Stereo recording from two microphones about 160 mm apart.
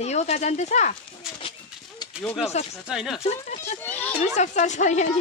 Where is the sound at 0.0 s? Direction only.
45° left (ahead or behind).